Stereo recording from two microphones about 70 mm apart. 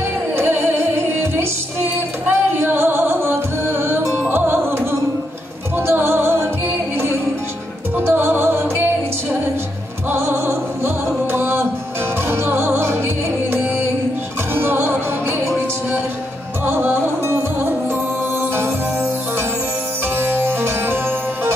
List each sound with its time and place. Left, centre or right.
0.4 s music: right
8.0 s music: right
14.5 s music: right
16.6 s music: right
20.2 s music: right